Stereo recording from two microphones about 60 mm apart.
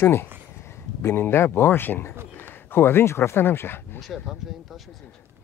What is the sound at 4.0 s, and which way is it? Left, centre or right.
Speech, centre.